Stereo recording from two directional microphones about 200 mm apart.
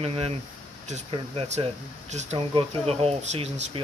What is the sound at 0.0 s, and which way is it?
Speech, 30° right (ahead or behind).